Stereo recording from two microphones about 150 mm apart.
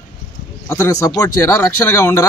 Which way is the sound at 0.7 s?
20° left (ahead or behind).